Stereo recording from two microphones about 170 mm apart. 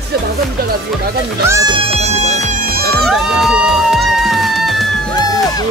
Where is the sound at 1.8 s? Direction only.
40° right (ahead or behind).